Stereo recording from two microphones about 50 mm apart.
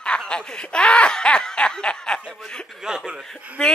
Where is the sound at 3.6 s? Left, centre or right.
Centre.